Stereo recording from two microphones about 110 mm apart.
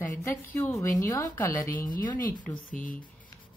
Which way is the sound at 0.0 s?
20° left (ahead or behind).